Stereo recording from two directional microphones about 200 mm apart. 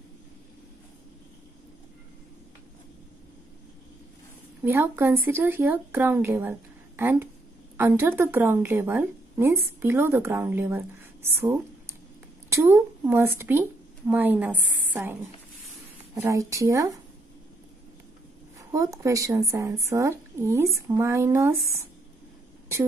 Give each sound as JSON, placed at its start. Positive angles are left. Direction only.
{"t": 4.6, "sound": "a woman's voice", "side_deg": -10}
{"t": 16.2, "sound": "speech", "side_deg": -15}
{"t": 18.7, "sound": "speech", "side_deg": -15}